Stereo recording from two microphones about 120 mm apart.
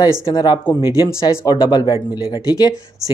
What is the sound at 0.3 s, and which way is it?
Speech, 35° left (ahead or behind).